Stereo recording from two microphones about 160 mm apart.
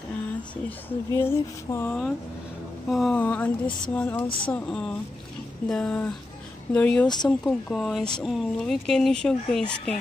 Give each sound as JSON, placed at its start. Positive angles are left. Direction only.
{"t": 0.7, "sound": "speech", "side_deg": 15}